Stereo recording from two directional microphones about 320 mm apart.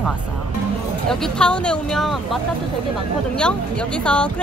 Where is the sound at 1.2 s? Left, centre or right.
Centre.